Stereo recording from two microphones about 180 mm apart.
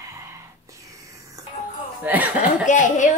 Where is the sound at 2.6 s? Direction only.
45° left (ahead or behind).